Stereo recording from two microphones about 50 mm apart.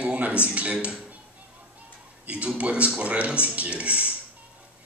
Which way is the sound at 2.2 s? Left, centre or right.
Right.